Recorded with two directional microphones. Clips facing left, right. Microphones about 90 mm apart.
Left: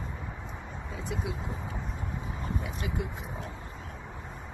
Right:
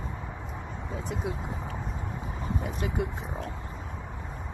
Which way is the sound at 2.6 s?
50° right (ahead or behind).